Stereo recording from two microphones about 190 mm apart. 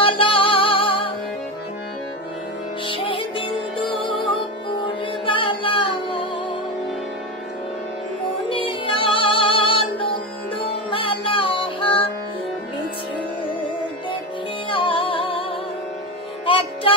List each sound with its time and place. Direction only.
0.0 s music: 30° left (ahead or behind)
2.9 s music: 25° left (ahead or behind)
5.2 s music: 25° left (ahead or behind)
8.5 s music: 25° left (ahead or behind)
14.7 s music: 25° left (ahead or behind)
16.4 s music: 30° left (ahead or behind)